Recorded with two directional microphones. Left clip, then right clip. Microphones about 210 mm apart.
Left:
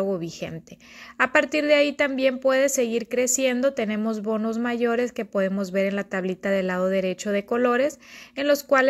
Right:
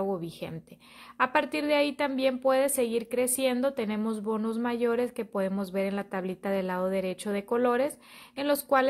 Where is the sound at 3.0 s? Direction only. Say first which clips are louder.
Left 5 dB; 20° left (ahead or behind).